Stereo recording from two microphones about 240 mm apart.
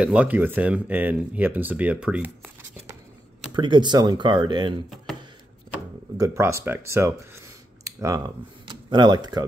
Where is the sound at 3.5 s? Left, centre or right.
Centre.